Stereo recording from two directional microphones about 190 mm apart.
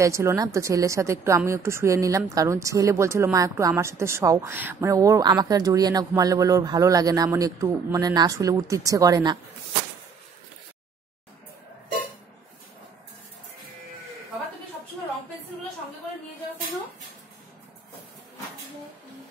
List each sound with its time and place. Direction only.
0.0 s a woman's voice: 15° right (ahead or behind)